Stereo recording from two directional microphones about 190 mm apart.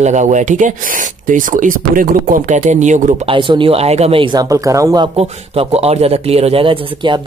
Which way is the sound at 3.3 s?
25° right (ahead or behind).